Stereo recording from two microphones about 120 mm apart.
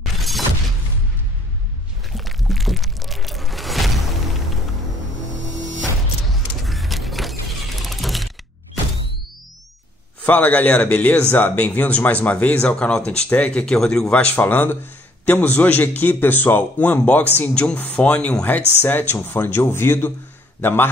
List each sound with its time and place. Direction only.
2.1 s music: centre (ahead or behind)
6.6 s a sound: centre (ahead or behind)
7.8 s music: centre (ahead or behind)
10.2 s speech: 15° left (ahead or behind)